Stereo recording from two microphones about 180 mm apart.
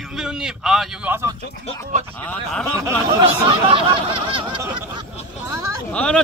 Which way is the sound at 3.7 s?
30° right (ahead or behind).